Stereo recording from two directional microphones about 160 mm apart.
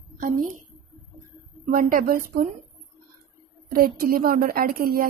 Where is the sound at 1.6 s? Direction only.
60° right (ahead or behind).